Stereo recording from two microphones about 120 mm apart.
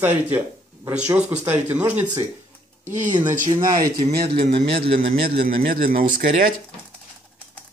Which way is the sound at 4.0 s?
45° right (ahead or behind).